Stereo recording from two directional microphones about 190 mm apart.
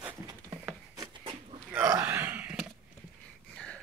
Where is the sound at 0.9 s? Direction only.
25° right (ahead or behind); by 2.7 s 10° right (ahead or behind).